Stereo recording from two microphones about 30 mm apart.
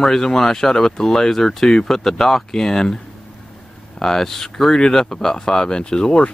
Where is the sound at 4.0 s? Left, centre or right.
Centre.